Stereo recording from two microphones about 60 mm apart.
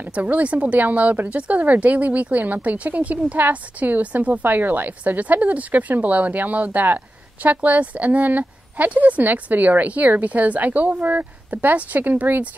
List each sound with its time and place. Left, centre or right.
0.0 s speech: right